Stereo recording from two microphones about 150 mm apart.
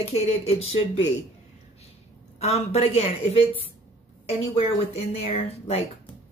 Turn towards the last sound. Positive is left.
turn(degrees=45)  # may be behind; listen again after turning